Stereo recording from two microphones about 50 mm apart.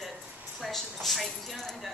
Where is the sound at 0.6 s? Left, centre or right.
Centre.